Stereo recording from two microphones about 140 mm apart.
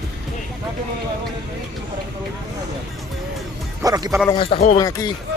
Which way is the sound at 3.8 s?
30° right (ahead or behind).